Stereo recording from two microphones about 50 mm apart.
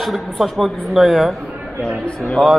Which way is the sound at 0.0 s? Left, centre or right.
Centre.